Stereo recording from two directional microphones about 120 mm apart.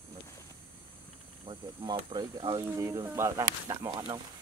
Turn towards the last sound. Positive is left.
turn(degrees=-30)  # may be behind; listen again after turning